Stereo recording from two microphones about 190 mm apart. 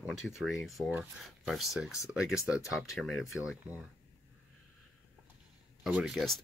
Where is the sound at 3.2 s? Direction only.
15° left (ahead or behind).